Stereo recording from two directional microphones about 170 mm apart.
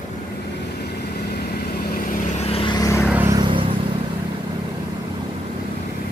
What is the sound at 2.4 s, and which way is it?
Vehicle, 35° left (ahead or behind).